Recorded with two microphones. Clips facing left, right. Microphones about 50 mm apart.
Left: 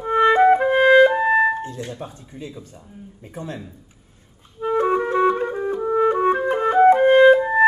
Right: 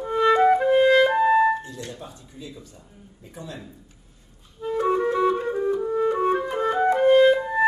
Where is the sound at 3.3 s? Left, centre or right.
Left.